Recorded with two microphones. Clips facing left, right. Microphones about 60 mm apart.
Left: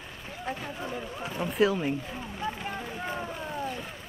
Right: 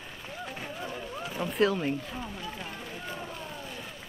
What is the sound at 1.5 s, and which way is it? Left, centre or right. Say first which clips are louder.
Speech: left 1 dB; centre.